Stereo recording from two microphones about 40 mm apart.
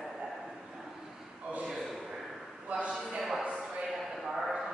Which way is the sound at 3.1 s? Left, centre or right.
Centre.